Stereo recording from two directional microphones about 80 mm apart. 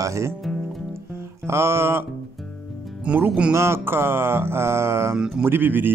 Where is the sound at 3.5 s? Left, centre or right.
Right.